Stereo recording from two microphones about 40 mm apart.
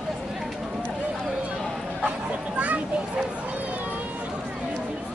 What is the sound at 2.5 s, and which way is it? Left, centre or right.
Children playing, right.